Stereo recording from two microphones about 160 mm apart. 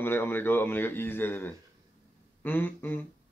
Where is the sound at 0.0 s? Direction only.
15° left (ahead or behind).